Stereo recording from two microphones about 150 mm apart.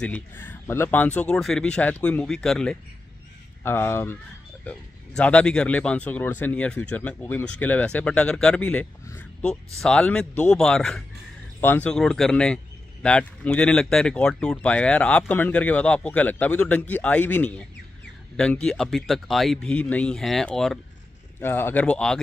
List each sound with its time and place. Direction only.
0.0 s speech: 10° left (ahead or behind)
3.6 s speech: 15° left (ahead or behind)
9.0 s a sound: 20° left (ahead or behind)
9.8 s speech: 5° left (ahead or behind)
21.4 s speech: 15° left (ahead or behind)